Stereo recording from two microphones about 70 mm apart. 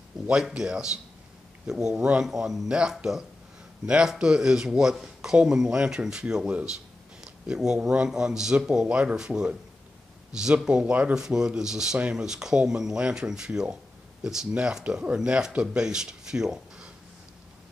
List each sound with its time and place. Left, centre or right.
0.3 s speech: centre
11.1 s speech: centre